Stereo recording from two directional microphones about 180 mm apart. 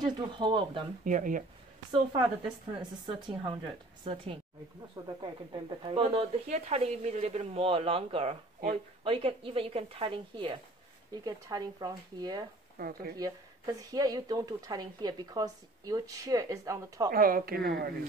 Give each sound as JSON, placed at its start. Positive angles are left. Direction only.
{"t": 0.0, "sound": "speech", "side_deg": -25}
{"t": 1.0, "sound": "speech", "side_deg": -45}
{"t": 1.9, "sound": "speech", "side_deg": -25}
{"t": 12.7, "sound": "speech", "side_deg": -55}
{"t": 13.2, "sound": "speech", "side_deg": -20}
{"t": 17.1, "sound": "a woman's voice", "side_deg": -55}